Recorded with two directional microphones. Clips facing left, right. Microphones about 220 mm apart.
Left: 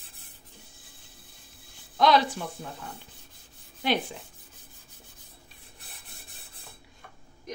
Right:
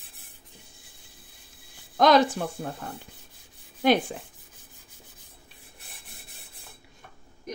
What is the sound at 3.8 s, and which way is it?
Speech, 50° right (ahead or behind).